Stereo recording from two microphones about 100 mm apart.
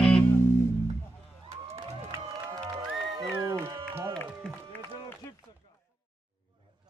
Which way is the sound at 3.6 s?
25° right (ahead or behind).